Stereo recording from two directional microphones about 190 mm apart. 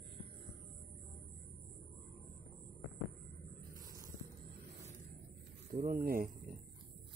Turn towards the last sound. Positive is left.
turn(degrees=-50)  # may be behind; listen again after turning